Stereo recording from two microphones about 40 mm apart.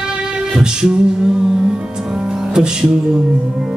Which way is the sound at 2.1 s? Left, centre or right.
Centre.